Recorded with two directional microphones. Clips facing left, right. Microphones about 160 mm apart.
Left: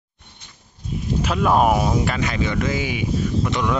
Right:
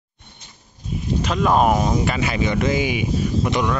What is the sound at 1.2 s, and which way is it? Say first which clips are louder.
Speech: even; 5° left (ahead or behind).